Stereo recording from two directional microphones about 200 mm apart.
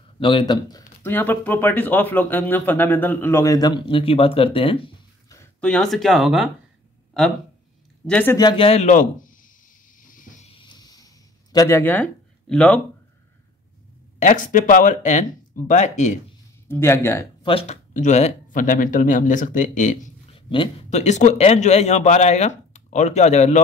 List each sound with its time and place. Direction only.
0.2 s speech: 25° left (ahead or behind)
5.3 s a sound: 15° left (ahead or behind)
5.7 s speech: centre (ahead or behind)
8.1 s speech: 10° left (ahead or behind)
8.4 s a man's voice: 25° left (ahead or behind); by 9.5 s 40° left (ahead or behind)
9.9 s a sound: 40° left (ahead or behind)
10.5 s a sound: 25° left (ahead or behind)
11.5 s speech: 15° left (ahead or behind)
14.2 s a man's voice: 40° left (ahead or behind)
16.6 s speech: 10° left (ahead or behind)
17.4 s a man's voice: 25° left (ahead or behind)
20.3 s a man's voice: 25° left (ahead or behind)